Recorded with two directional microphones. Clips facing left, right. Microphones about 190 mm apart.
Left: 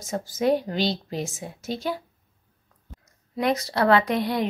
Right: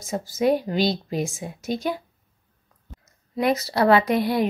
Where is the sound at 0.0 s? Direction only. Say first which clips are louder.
Right 2 dB; 10° right (ahead or behind).